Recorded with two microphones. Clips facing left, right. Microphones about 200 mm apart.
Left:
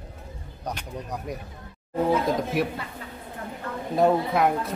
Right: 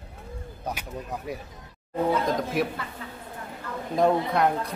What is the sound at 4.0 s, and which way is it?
Speech, 5° left (ahead or behind).